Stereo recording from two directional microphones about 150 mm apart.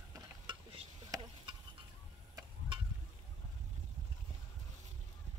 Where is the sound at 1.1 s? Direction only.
30° right (ahead or behind).